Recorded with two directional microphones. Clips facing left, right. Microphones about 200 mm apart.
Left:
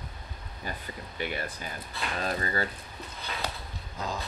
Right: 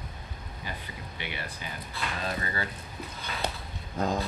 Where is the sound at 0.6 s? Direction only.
45° left (ahead or behind).